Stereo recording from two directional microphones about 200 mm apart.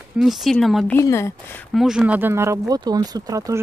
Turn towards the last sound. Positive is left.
turn(degrees=-15)  # may be behind; listen again after turning